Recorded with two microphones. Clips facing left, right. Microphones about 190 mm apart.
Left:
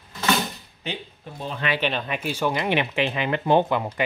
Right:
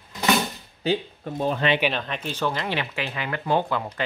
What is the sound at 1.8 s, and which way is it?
Speech, centre (ahead or behind).